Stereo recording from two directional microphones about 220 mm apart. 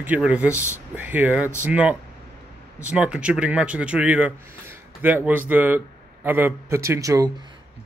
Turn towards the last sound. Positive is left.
turn(degrees=-15)  # may be behind; listen again after turning